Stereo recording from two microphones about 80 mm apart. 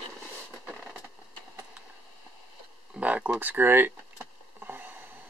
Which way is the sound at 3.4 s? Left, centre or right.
Right.